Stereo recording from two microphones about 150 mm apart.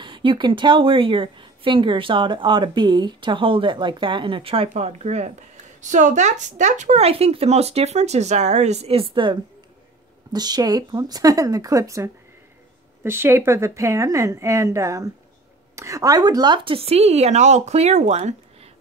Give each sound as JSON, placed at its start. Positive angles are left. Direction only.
{"t": 0.0, "sound": "a woman's voice", "side_deg": -35}